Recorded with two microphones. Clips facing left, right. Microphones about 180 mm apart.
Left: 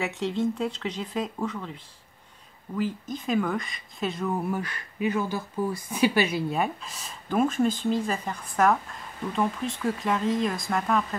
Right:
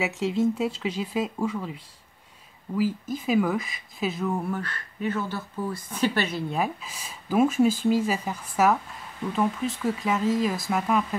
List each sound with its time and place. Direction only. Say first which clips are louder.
0.0 s speech: right 3 dB; 5° right (ahead or behind)
4.4 s speech: left 1 dB; 10° left (ahead or behind)
6.6 s speech: even; 5° right (ahead or behind)